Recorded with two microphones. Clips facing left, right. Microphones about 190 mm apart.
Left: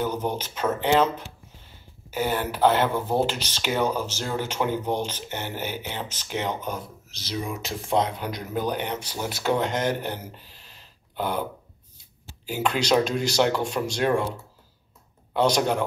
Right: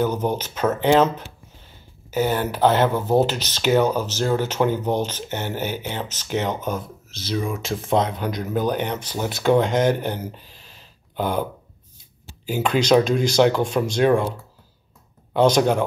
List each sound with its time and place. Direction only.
0.0 s speech: 45° right (ahead or behind)
11.1 s speech: 45° right (ahead or behind)
12.4 s speech: 50° right (ahead or behind)
15.3 s speech: 50° right (ahead or behind)